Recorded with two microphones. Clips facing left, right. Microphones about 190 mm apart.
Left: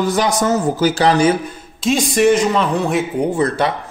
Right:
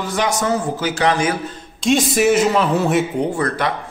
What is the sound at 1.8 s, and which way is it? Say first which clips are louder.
Speech: left 1 dB; centre (ahead or behind).